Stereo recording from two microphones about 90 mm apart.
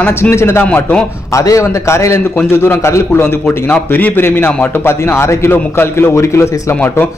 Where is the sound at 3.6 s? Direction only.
20° left (ahead or behind).